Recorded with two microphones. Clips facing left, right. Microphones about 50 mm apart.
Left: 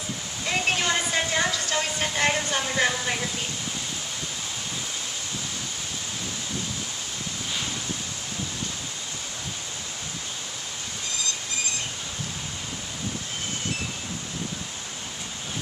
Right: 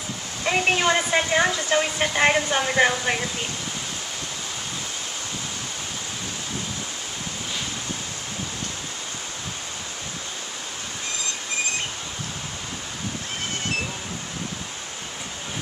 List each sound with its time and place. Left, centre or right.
0.5 s speech: right